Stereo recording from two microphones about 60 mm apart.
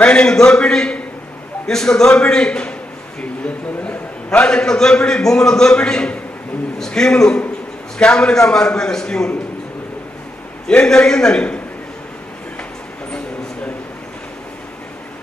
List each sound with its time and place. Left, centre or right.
0.0 s a man's voice: centre
10.7 s a man's voice: centre